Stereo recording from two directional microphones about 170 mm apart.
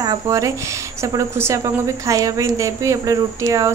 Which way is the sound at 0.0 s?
20° right (ahead or behind).